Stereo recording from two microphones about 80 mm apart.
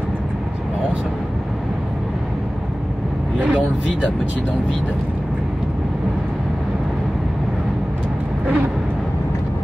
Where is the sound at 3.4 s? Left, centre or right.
Centre.